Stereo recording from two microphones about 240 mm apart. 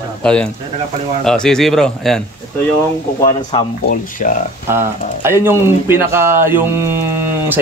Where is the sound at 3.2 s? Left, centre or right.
Centre.